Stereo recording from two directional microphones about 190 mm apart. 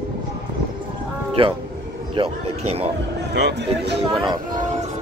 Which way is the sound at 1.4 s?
30° right (ahead or behind).